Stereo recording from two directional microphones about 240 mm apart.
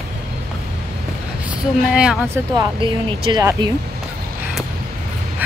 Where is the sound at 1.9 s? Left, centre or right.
Centre.